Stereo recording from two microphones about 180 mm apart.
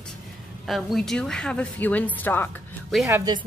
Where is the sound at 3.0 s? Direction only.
20° right (ahead or behind).